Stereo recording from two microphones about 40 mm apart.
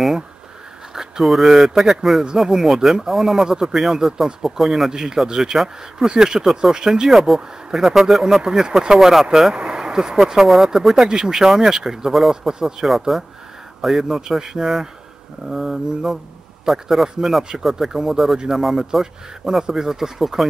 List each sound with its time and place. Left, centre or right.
1.2 s speech: centre
7.1 s speech: centre
9.6 s speech: centre